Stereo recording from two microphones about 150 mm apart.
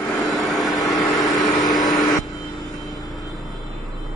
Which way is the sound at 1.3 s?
25° left (ahead or behind).